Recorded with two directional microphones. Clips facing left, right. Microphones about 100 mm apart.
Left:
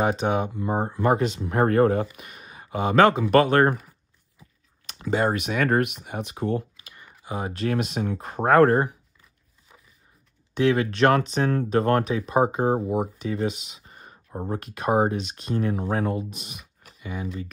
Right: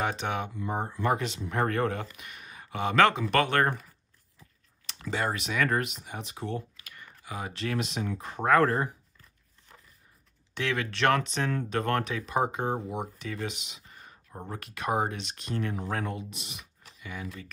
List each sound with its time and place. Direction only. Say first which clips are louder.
0.0 s speech: left 7 dB; 35° left (ahead or behind)
0.5 s speech: left 6 dB; 45° left (ahead or behind)
5.0 s speech: left 7 dB; 35° left (ahead or behind)
5.3 s speech: left 5 dB; 50° left (ahead or behind)
6.8 s computer keyboard: even; 20° left (ahead or behind)
7.2 s speech: left 7 dB; 35° left (ahead or behind)
9.7 s a sound: even; 5° left (ahead or behind)
10.5 s speech: left 10 dB; 35° left (ahead or behind)
16.2 s speech: left 8 dB; 45° left (ahead or behind)
17.0 s speech: left 7 dB; 30° left (ahead or behind)